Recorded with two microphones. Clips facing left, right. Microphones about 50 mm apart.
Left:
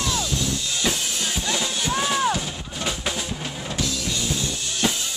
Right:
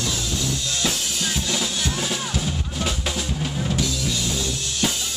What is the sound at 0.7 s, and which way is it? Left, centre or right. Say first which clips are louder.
Drum kit: even; centre.